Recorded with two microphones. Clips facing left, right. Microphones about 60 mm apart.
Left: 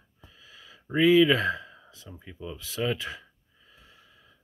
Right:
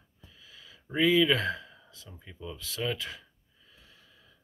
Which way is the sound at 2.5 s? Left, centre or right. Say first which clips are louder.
Left 4 dB; centre.